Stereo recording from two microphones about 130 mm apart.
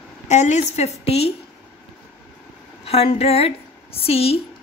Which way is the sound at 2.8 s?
50° left (ahead or behind).